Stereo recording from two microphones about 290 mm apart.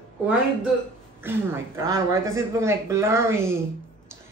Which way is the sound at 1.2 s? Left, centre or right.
Centre.